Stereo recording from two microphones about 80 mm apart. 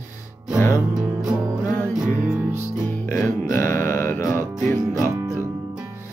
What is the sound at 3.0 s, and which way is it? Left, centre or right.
Music, left.